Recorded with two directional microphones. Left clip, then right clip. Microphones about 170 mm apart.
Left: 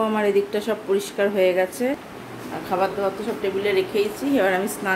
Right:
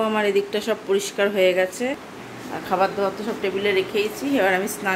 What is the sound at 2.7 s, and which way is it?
Speech, 15° right (ahead or behind).